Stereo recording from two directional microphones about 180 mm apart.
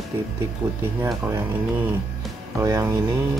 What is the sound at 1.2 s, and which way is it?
Speech, 10° right (ahead or behind).